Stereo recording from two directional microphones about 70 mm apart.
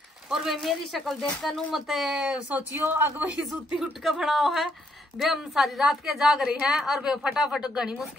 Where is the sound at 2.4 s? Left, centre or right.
Right.